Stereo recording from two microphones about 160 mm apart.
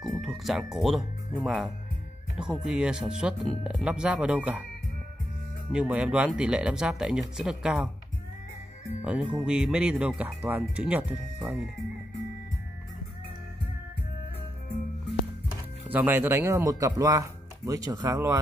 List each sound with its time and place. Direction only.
0.0 s speech: centre (ahead or behind)
5.7 s speech: 5° right (ahead or behind)
9.0 s speech: 10° right (ahead or behind)
15.9 s speech: 10° right (ahead or behind)